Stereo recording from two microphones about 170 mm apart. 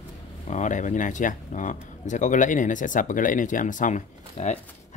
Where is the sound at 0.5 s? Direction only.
45° left (ahead or behind).